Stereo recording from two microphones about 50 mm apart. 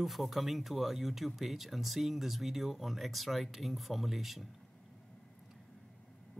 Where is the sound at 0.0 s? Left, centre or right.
Centre.